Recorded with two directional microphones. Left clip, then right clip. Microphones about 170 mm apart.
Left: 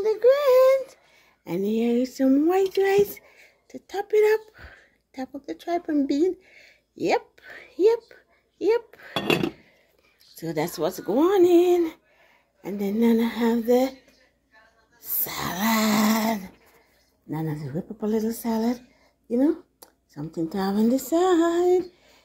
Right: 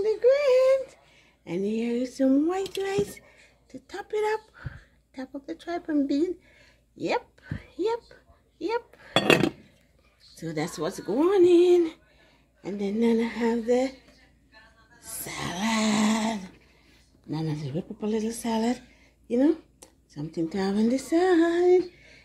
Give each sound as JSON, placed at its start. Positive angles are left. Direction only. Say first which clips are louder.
{"t": 0.0, "sound": "a sound", "louder": "left 2 dB", "side_deg": 20}
{"t": 1.4, "sound": "speech", "louder": "left 4 dB", "side_deg": 25}
{"t": 2.7, "sound": "a sound", "louder": "left 8 dB", "side_deg": 25}
{"t": 10.3, "sound": "speech", "louder": "left 4 dB", "side_deg": 35}
{"t": 12.6, "sound": "speech", "louder": "left 2 dB", "side_deg": 15}
{"t": 15.0, "sound": "a sound", "louder": "left 3 dB", "side_deg": 20}
{"t": 17.3, "sound": "speech", "louder": "left 2 dB", "side_deg": 15}
{"t": 18.0, "sound": "speech", "louder": "left 3 dB", "side_deg": 35}
{"t": 18.4, "sound": "speech", "louder": "left 1 dB", "side_deg": 10}
{"t": 19.8, "sound": "a sound", "louder": "left 1 dB", "side_deg": 30}
{"t": 20.5, "sound": "speech", "louder": "left 3 dB", "side_deg": 5}
{"t": 20.9, "sound": "speech", "louder": "left 1 dB", "side_deg": 20}